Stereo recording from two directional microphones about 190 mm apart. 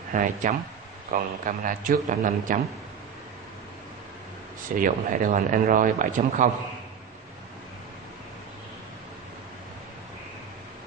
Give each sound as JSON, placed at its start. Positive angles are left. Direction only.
{"t": 0.1, "sound": "a man's voice", "side_deg": -45}
{"t": 4.7, "sound": "a man's voice", "side_deg": -45}